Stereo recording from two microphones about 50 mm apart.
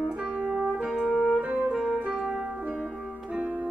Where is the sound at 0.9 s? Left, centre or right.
Left.